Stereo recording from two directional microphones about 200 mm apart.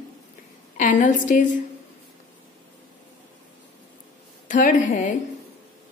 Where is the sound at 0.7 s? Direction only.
40° left (ahead or behind).